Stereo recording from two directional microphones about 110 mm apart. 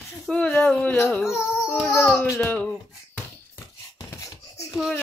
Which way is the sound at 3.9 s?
30° left (ahead or behind).